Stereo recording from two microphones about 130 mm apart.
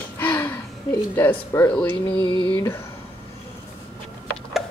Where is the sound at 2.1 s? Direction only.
30° left (ahead or behind).